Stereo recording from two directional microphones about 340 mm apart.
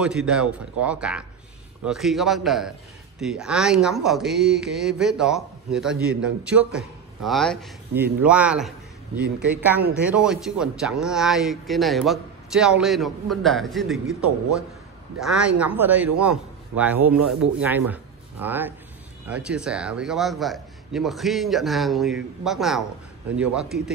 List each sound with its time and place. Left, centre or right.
0.0 s speech: centre
15.1 s speech: centre